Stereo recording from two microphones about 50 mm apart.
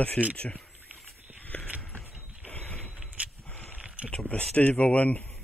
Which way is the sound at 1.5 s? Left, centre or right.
Left.